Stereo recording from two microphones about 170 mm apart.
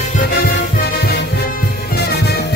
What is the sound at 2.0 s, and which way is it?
Music, 75° left (ahead or behind).